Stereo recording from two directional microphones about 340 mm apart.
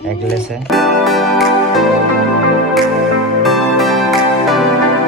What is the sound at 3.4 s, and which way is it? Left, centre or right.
Music, centre.